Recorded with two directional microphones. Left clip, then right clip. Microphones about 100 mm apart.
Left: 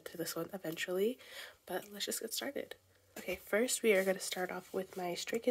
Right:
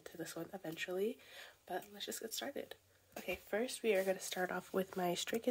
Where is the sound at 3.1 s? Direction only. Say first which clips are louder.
Left 2 dB; 25° left (ahead or behind).